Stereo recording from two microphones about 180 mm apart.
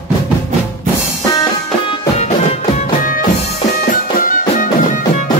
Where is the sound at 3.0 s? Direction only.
50° left (ahead or behind).